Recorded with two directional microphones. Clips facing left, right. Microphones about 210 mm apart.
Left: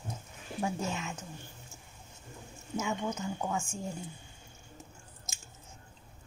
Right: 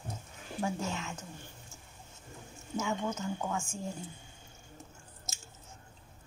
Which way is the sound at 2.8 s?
15° left (ahead or behind).